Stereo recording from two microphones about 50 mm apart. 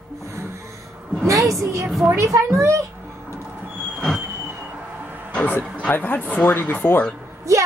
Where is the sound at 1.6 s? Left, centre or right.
Right.